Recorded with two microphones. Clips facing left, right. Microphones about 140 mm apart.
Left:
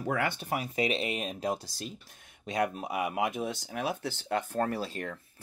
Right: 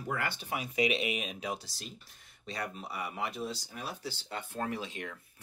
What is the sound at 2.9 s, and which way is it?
Speech, 90° left.